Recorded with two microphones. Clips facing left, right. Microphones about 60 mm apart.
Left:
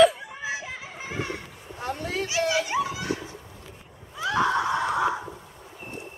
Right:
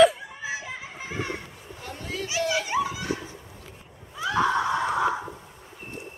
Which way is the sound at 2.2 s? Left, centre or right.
Centre.